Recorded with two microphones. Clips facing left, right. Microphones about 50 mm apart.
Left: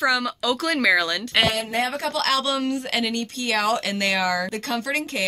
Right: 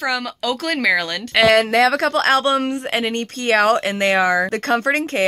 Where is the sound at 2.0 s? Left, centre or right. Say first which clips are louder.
Right 7 dB; right.